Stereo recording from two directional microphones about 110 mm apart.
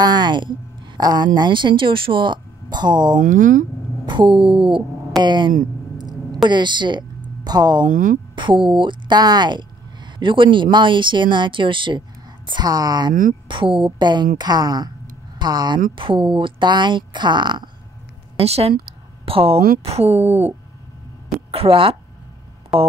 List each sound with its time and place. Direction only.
0.0 s a woman's voice: 40° right (ahead or behind)
5.9 s a sound: 40° right (ahead or behind)
8.4 s a woman's voice: 50° right (ahead or behind)
16.0 s a woman's voice: 55° right (ahead or behind)
18.4 s a woman's voice: 65° right (ahead or behind)
21.5 s speech: 60° right (ahead or behind)